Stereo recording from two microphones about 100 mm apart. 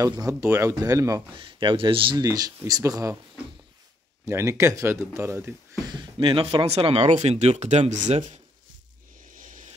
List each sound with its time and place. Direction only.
0.3 s speech: 30° right (ahead or behind)
1.4 s speech: 55° right (ahead or behind)
2.1 s speech: 40° right (ahead or behind)
4.3 s speech: 25° right (ahead or behind)
5.9 s speech: 50° right (ahead or behind); by 8.2 s 90° right